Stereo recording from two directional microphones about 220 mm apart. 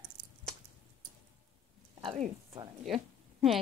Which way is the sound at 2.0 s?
25° right (ahead or behind).